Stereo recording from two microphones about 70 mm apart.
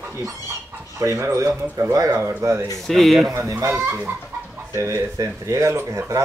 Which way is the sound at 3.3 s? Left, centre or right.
Right.